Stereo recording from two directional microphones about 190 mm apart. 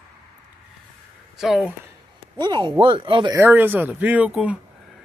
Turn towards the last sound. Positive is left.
turn(degrees=-5)  # may be behind; listen again after turning